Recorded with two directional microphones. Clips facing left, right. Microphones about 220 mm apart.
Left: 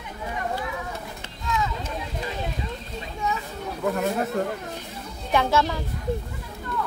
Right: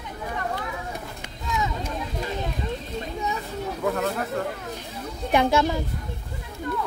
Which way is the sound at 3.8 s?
5° left (ahead or behind).